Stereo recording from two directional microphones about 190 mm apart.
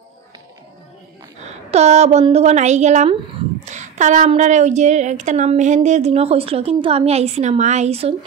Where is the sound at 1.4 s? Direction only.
35° right (ahead or behind).